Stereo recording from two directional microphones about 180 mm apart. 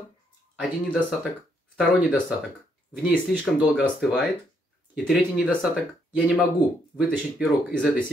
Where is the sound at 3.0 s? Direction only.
5° right (ahead or behind).